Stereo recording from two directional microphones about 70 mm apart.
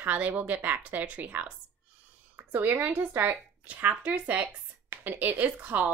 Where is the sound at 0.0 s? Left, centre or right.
Right.